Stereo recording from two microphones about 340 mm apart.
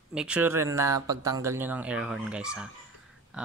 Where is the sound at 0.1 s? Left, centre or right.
Centre.